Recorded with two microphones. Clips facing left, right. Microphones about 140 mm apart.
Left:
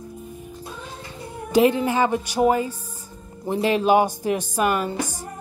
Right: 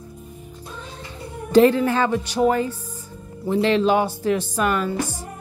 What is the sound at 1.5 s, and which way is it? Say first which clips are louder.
A woman's voice: right 3 dB; 15° left (ahead or behind).